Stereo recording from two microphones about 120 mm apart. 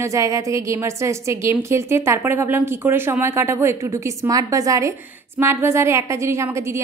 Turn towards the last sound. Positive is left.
turn(degrees=-20)  # may be behind; listen again after turning